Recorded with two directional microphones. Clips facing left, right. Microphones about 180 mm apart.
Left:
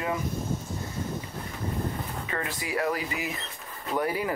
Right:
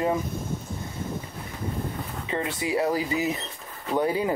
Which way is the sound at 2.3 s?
25° right (ahead or behind).